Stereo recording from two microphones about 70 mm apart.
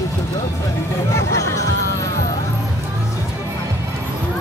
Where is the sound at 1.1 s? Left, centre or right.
Left.